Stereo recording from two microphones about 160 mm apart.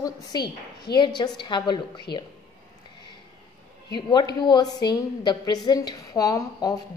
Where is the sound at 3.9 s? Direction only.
25° left (ahead or behind).